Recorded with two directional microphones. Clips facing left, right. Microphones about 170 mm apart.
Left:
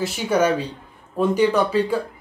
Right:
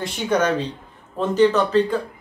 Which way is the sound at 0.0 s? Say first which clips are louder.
Left 1 dB; 5° left (ahead or behind).